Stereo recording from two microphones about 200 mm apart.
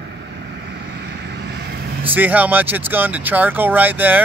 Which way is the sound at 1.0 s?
60° right (ahead or behind).